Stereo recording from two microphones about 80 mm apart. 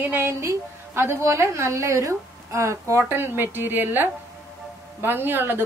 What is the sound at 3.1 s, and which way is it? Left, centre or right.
Speech, right.